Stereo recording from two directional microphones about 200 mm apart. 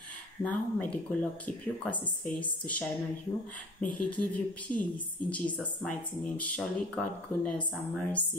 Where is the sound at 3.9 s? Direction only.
5° left (ahead or behind).